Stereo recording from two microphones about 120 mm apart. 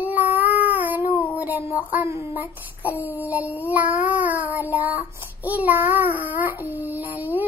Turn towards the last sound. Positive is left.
turn(degrees=-15)  # may be behind; listen again after turning